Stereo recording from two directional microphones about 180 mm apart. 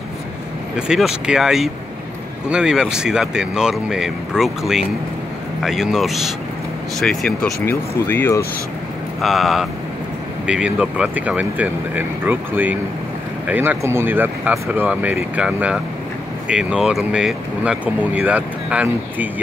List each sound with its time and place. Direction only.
0.7 s speech: 5° right (ahead or behind)
9.2 s speech: centre (ahead or behind)